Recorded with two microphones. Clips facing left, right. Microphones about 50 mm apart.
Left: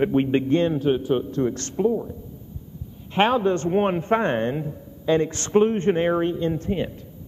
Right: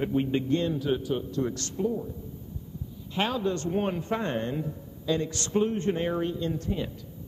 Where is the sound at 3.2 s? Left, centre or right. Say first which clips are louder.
Left 8 dB; left.